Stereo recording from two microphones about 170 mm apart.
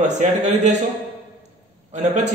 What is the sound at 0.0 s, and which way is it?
Speech, 45° right (ahead or behind).